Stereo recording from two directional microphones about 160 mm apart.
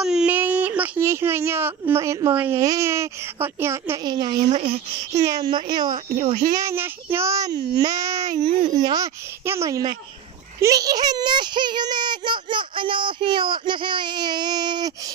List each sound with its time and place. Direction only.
0.0 s baby cry: 5° right (ahead or behind)
2.6 s a child's voice: 20° right (ahead or behind)
5.9 s speech: 55° right (ahead or behind)
6.6 s a child's voice: 15° right (ahead or behind)